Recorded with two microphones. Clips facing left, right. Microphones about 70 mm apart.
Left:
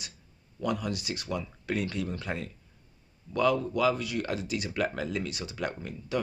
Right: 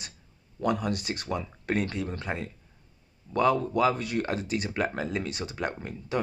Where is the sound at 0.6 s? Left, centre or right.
Right.